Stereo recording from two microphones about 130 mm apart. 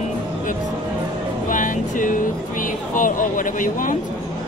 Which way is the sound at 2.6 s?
90° left.